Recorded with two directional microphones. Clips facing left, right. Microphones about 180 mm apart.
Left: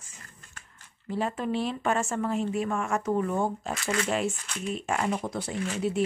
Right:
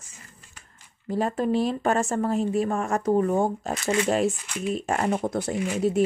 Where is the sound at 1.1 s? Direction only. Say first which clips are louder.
Right 5 dB; 40° right (ahead or behind).